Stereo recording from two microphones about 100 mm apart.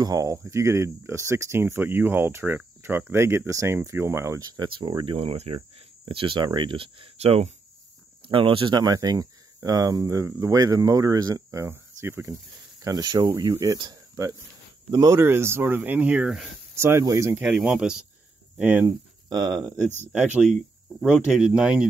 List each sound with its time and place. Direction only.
0.0 s speech: 35° right (ahead or behind)
4.4 s speech: 40° right (ahead or behind)
4.6 s speech: 55° right (ahead or behind); by 5.6 s 75° right (ahead or behind)
6.0 s speech: 60° right (ahead or behind); by 7.4 s 80° right
8.3 s speech: 60° right (ahead or behind); by 12.4 s 25° right (ahead or behind)
12.8 s speech: 45° right (ahead or behind)
14.9 s speech: 40° right (ahead or behind)
15.1 s speech: 25° right (ahead or behind); by 16.4 s 5° right (ahead or behind)
16.7 s speech: 25° right (ahead or behind)
17.5 s speech: 5° right (ahead or behind)
18.9 s speech: 40° right (ahead or behind)
20.5 s speech: 5° right (ahead or behind)